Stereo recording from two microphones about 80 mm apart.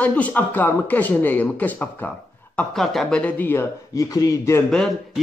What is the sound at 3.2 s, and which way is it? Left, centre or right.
Speech, left.